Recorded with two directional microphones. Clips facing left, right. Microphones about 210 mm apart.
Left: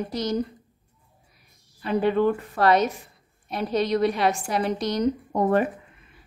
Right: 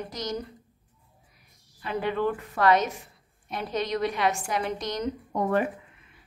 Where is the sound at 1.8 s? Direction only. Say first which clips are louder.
Left 6 dB; 35° left (ahead or behind).